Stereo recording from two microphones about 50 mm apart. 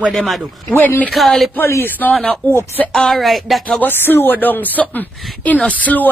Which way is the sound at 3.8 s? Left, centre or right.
Left.